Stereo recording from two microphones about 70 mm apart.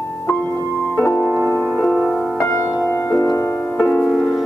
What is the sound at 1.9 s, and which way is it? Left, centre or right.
Music, centre.